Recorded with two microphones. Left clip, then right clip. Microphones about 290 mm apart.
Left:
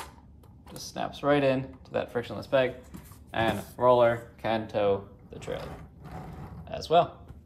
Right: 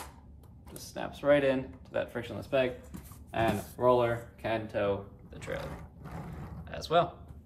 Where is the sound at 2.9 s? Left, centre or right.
Centre.